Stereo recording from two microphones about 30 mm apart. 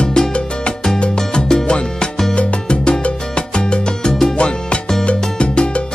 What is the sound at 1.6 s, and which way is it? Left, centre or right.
Music, left.